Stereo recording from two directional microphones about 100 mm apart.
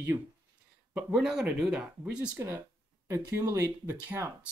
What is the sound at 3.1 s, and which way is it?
Speech, 30° right (ahead or behind).